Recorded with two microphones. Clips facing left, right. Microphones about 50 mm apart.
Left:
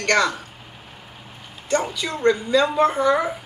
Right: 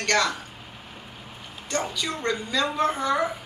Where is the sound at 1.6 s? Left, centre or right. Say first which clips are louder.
Left 5 dB; centre.